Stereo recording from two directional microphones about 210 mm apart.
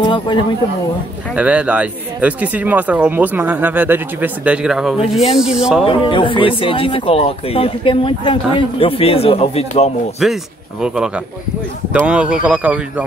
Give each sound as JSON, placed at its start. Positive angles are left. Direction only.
{"t": 0.0, "sound": "speech", "side_deg": 20}
{"t": 1.3, "sound": "speech", "side_deg": -5}
{"t": 5.9, "sound": "speech", "side_deg": 25}
{"t": 10.2, "sound": "speech", "side_deg": 0}
{"t": 12.1, "sound": "speech", "side_deg": -5}